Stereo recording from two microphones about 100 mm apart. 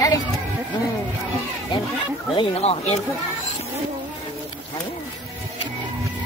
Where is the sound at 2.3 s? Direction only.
85° left.